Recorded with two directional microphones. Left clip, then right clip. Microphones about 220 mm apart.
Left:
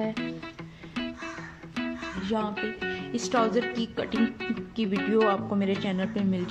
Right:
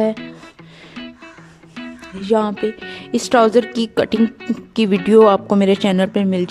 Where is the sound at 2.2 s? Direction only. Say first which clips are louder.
Right 14 dB; 50° right (ahead or behind).